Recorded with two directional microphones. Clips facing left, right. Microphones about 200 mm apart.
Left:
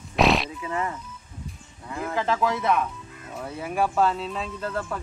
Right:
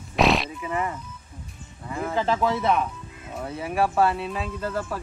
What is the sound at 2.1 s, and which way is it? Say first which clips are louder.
Speech: right 1 dB; 25° right (ahead or behind).